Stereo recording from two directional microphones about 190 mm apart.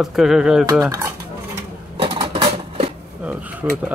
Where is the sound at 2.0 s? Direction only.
25° right (ahead or behind).